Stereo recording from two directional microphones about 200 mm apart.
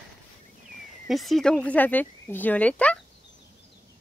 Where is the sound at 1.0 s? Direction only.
Centre (ahead or behind).